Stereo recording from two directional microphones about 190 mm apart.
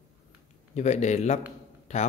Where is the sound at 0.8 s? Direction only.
35° left (ahead or behind).